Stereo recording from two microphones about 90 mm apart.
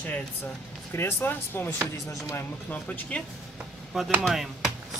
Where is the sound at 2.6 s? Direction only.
20° left (ahead or behind).